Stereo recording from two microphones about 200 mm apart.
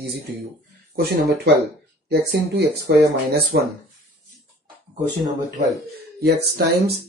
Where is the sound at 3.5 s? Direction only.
55° right (ahead or behind).